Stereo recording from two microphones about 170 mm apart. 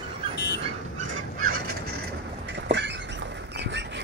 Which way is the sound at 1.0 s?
60° right (ahead or behind).